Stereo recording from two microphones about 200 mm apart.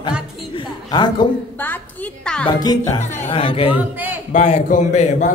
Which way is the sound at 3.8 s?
10° right (ahead or behind).